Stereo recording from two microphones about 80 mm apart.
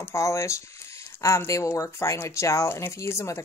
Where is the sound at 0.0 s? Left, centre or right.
Left.